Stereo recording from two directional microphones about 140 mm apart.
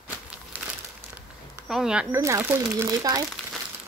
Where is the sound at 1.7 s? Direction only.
5° right (ahead or behind).